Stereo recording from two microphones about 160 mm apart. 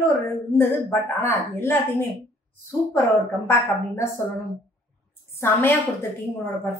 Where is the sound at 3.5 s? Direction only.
15° left (ahead or behind).